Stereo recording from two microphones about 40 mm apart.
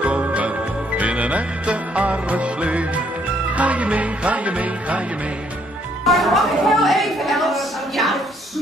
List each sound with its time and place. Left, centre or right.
0.2 s music: right
6.0 s a woman's voice: centre